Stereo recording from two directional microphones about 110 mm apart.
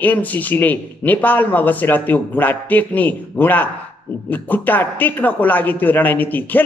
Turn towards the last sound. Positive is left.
turn(degrees=15)  # may be behind; listen again after turning